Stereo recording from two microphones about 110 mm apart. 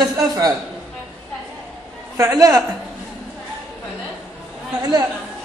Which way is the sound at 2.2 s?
30° right (ahead or behind).